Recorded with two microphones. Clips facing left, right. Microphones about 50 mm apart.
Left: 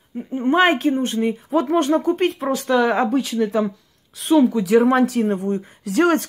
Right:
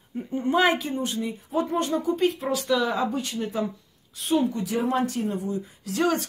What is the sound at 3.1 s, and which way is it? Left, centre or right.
Speech, left.